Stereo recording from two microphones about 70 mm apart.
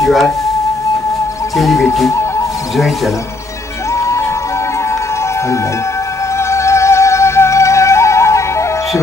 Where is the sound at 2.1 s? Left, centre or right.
Left.